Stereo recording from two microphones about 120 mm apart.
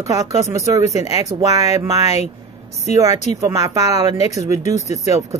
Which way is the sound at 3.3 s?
25° right (ahead or behind).